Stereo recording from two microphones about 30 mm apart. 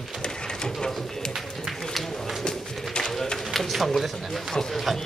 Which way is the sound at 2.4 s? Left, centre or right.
Left.